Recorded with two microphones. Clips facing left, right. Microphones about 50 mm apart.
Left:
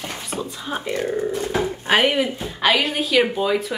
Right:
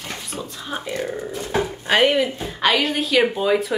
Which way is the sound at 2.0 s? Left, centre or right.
Centre.